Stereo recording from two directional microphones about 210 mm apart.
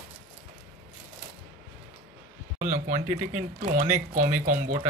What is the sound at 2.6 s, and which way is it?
Speech, 35° right (ahead or behind).